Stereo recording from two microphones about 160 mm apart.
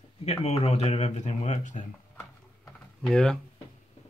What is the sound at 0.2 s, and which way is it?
Speech, 40° left (ahead or behind).